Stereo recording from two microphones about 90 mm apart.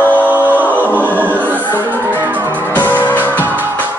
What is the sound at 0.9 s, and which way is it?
Choir, 20° right (ahead or behind).